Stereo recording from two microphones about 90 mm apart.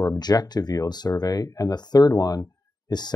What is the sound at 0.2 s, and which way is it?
Speech, 50° left (ahead or behind).